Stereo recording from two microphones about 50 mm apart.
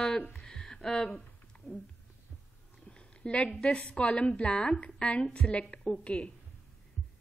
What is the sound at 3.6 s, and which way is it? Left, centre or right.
A woman's voice, left.